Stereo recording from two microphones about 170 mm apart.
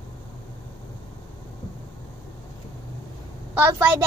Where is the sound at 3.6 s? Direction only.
15° right (ahead or behind).